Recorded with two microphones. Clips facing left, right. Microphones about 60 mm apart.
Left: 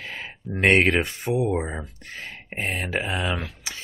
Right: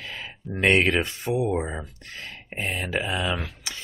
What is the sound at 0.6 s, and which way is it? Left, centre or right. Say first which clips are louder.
Speech: left 2 dB; left.